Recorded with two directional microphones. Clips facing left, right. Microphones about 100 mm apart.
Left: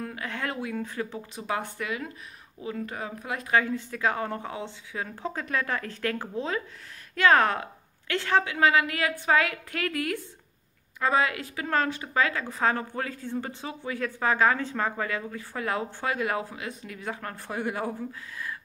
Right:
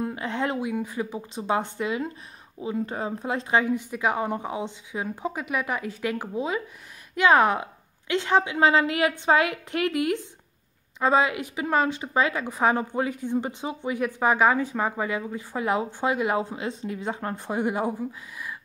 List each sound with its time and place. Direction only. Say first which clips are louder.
0.0 s speech: right 6 dB; 25° right (ahead or behind)